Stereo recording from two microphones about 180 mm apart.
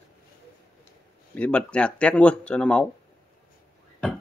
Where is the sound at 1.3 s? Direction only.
5° left (ahead or behind).